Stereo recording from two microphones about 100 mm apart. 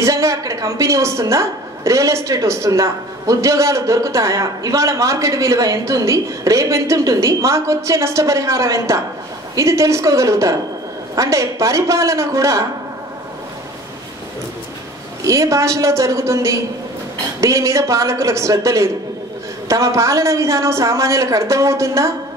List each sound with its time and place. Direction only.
0.0 s a woman's voice: 30° right (ahead or behind)
15.2 s a woman's voice: 30° right (ahead or behind)